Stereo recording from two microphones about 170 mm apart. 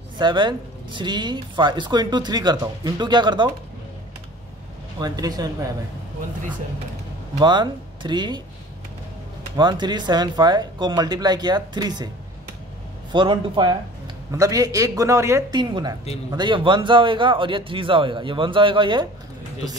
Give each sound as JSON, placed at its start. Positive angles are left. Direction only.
{"t": 0.2, "sound": "speech", "side_deg": -25}
{"t": 5.0, "sound": "speech", "side_deg": -25}
{"t": 7.3, "sound": "speech", "side_deg": -25}
{"t": 9.6, "sound": "speech", "side_deg": -25}
{"t": 13.1, "sound": "speech", "side_deg": -30}
{"t": 15.6, "sound": "speech", "side_deg": -25}